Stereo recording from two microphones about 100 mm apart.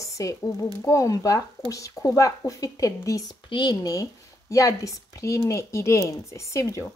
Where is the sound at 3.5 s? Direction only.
50° left (ahead or behind); by 6.8 s 35° left (ahead or behind).